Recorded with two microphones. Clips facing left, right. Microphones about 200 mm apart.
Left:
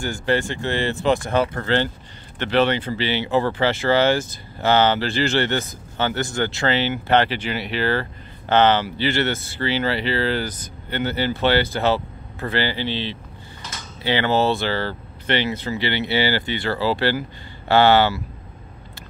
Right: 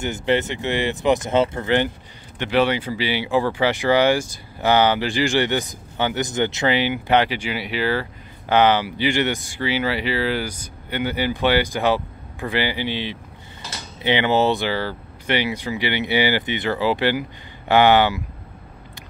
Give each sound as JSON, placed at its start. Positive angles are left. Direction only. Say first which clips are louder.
{"t": 0.0, "sound": "speech", "louder": "right 1 dB", "side_deg": -20}